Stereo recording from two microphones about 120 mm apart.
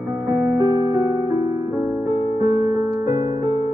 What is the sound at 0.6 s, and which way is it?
Music, 25° right (ahead or behind).